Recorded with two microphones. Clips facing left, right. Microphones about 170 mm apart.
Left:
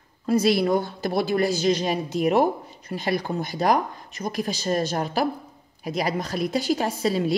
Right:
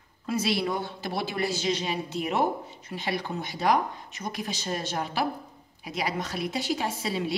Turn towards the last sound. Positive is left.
turn(degrees=40)  # may be behind; listen again after turning